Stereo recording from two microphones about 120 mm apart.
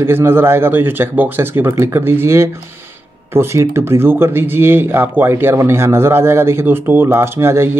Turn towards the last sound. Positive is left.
turn(degrees=-20)  # may be behind; listen again after turning